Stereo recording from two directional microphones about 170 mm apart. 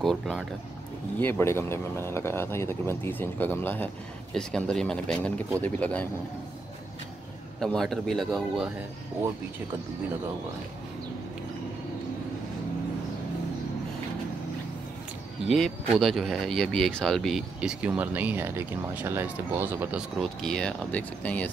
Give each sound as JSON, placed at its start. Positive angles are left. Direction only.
{"t": 0.0, "sound": "speech", "side_deg": 5}
{"t": 1.2, "sound": "speech", "side_deg": 15}
{"t": 7.6, "sound": "speech", "side_deg": 0}
{"t": 15.4, "sound": "speech", "side_deg": 0}
{"t": 20.2, "sound": "speech", "side_deg": 5}